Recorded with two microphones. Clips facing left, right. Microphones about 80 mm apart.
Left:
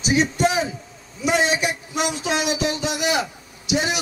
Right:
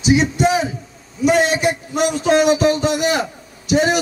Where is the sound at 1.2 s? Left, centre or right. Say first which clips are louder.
Right 5 dB; right.